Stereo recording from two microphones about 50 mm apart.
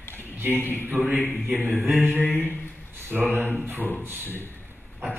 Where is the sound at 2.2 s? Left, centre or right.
Left.